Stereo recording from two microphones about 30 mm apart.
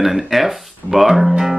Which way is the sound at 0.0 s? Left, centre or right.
Centre.